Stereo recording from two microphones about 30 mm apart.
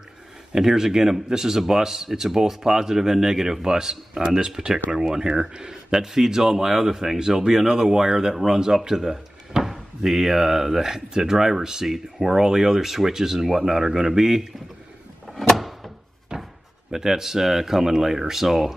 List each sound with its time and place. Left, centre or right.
0.5 s speech: centre
5.3 s speech: right
5.7 s speech: centre
15.5 s door: centre
16.9 s speech: centre